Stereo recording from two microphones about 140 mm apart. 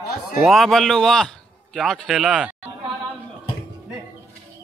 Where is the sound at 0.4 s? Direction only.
Centre (ahead or behind).